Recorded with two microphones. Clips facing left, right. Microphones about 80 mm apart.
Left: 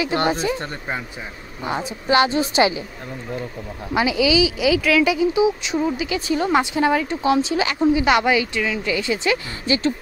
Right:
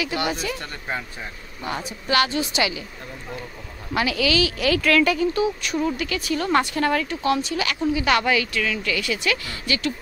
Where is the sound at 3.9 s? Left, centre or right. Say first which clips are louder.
Left 4 dB; centre.